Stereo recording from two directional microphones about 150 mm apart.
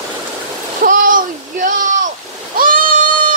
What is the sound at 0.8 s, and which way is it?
Splash, 65° right (ahead or behind).